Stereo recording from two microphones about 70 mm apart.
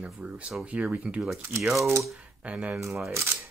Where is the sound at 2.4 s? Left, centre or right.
Right.